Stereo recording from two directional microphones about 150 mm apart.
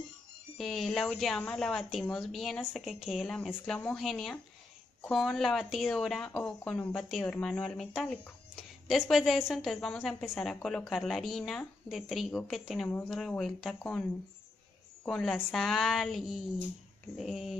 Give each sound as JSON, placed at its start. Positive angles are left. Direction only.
{"t": 0.6, "sound": "speech", "side_deg": 0}
{"t": 15.0, "sound": "speech", "side_deg": 5}